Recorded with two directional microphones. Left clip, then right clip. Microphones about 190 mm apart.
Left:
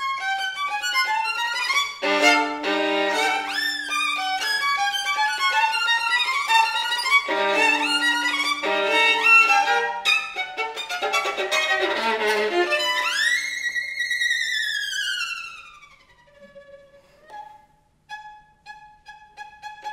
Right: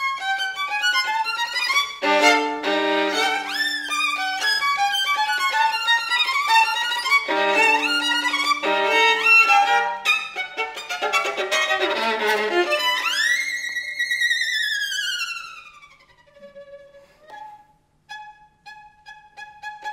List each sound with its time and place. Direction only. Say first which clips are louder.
0.1 s music: right 1 dB; 20° right (ahead or behind)
19.0 s violin: right 1 dB; 20° right (ahead or behind)